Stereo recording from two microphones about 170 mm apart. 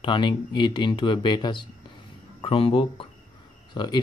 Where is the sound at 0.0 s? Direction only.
30° left (ahead or behind).